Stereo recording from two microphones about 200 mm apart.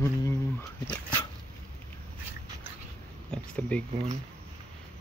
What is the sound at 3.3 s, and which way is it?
Speech, 5° left (ahead or behind).